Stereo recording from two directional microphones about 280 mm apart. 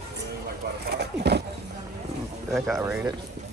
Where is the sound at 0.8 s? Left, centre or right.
Right.